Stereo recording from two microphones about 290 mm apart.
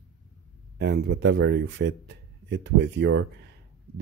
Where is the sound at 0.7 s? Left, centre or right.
Right.